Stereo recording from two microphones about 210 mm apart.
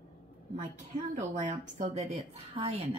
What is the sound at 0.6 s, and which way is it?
A woman's voice, 35° right (ahead or behind).